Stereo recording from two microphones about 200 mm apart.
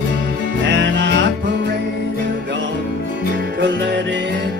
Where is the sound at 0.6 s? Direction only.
60° right (ahead or behind).